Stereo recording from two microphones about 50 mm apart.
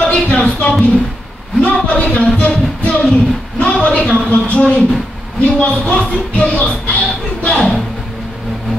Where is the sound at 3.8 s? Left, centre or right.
Left.